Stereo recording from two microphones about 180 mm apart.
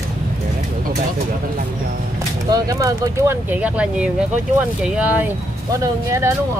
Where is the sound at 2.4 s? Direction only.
20° right (ahead or behind).